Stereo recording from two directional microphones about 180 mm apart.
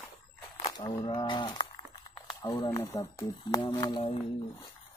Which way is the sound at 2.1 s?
25° left (ahead or behind).